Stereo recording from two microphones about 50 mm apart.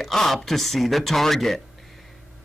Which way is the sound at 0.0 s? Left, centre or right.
Centre.